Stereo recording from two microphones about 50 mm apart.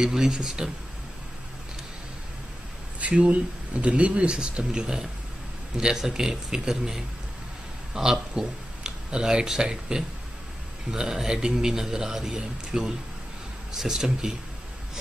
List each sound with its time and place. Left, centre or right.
0.0 s a man's voice: centre
3.0 s a man's voice: right; by 14.3 s centre